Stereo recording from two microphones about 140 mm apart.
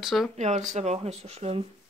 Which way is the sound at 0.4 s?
60° right (ahead or behind).